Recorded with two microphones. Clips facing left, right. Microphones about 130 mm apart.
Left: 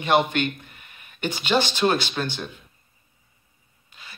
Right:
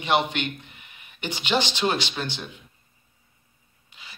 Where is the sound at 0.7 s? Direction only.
15° right (ahead or behind).